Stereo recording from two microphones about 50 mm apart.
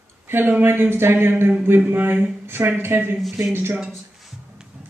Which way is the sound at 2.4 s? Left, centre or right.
Right.